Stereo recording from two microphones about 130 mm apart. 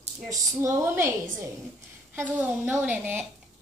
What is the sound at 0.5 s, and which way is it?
A woman's voice, 20° right (ahead or behind).